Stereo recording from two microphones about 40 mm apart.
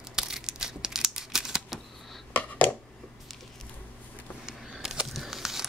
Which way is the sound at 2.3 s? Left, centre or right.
Left.